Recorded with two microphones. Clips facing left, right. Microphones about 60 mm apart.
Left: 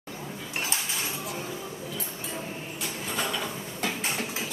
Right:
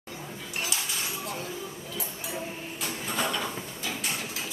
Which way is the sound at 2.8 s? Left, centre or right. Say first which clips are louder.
Right 1 dB; centre.